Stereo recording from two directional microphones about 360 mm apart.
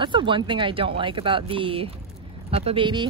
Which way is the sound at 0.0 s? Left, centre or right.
Centre.